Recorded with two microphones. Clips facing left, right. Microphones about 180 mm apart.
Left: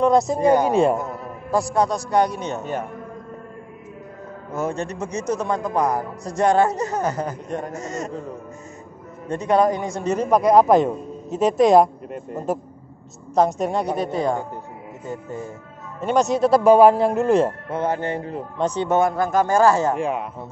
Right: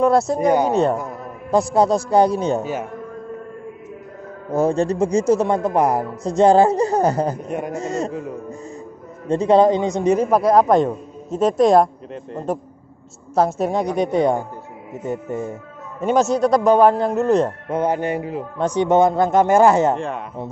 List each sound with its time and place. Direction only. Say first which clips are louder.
0.0 s a man's voice: right 1 dB; 5° right (ahead or behind)
0.7 s a man's voice: even; 10° left (ahead or behind)
1.5 s speech: right 4 dB; 25° right (ahead or behind)
4.5 s speech: right 8 dB; 35° right (ahead or behind)
7.4 s a man's voice: right 3 dB; 10° right (ahead or behind)
7.7 s speech: right 5 dB; 30° right (ahead or behind)
9.3 s a man's voice: right 5 dB; 25° right (ahead or behind); by 12.5 s 5° left (ahead or behind)
13.3 s a man's voice: right 1 dB; 5° right (ahead or behind)
13.9 s a man's voice: right 5 dB; 20° right (ahead or behind)
16.0 s a man's voice: right 2 dB; 5° right (ahead or behind)
16.3 s a man's voice: left 3 dB; 5° left (ahead or behind)
17.6 s a man's voice: right 3 dB; 15° right (ahead or behind)
20.0 s a man's voice: left 3 dB; 5° left (ahead or behind)